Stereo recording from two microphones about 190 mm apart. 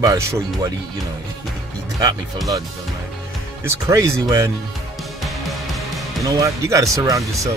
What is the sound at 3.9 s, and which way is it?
Speech, 15° right (ahead or behind).